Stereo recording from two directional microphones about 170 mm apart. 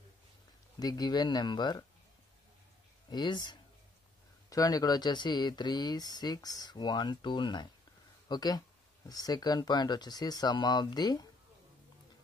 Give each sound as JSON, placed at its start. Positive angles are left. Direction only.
{"t": 0.7, "sound": "speech", "side_deg": 25}
{"t": 3.1, "sound": "speech", "side_deg": 25}